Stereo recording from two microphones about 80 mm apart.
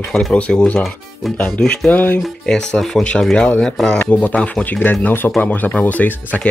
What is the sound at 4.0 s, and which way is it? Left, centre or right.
A man's voice, centre.